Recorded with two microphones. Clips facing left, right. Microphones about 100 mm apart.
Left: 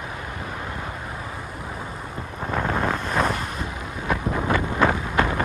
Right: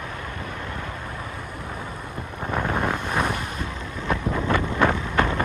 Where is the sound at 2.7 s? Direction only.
15° right (ahead or behind).